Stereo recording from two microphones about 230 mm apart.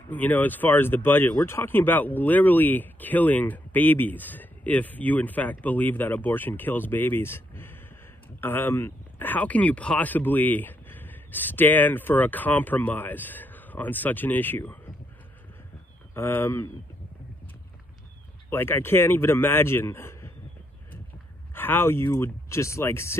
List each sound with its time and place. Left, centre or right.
0.1 s speech: centre
16.2 s speech: centre
18.5 s speech: centre
21.5 s speech: centre